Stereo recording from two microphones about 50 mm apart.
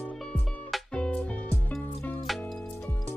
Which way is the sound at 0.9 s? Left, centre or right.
Left.